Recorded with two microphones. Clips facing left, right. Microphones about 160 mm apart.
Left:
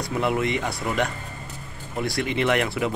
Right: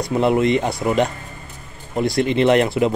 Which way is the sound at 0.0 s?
25° right (ahead or behind).